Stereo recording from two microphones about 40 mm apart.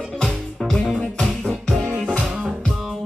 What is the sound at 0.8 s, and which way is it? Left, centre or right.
Music, centre.